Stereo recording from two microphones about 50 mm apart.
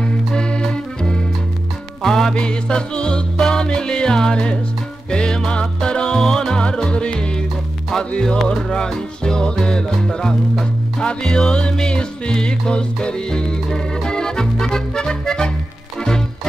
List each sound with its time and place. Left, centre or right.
0.0 s music: centre